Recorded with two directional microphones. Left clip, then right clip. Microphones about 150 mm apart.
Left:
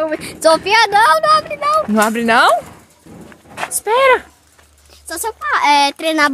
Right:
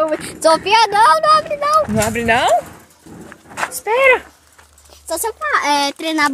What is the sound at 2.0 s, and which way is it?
Speech, 45° left (ahead or behind).